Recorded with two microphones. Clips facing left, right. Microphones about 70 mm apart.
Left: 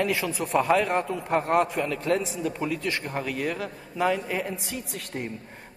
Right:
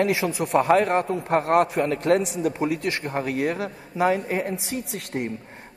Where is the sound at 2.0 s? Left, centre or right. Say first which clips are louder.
Right 6 dB; right.